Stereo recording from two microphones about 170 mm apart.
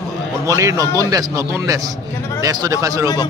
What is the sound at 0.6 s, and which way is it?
A man's voice, 20° right (ahead or behind).